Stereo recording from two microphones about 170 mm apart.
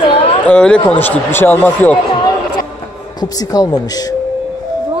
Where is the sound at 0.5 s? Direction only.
5° left (ahead or behind).